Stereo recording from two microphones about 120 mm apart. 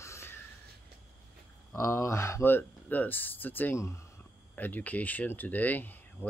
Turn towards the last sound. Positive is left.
turn(degrees=15)  # may be behind; listen again after turning